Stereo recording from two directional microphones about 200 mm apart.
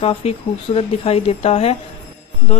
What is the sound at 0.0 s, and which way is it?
A woman's voice, 30° left (ahead or behind).